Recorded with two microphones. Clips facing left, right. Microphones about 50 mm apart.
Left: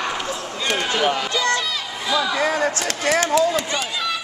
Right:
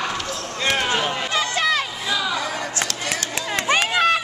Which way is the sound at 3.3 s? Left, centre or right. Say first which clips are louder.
Left 3 dB; right.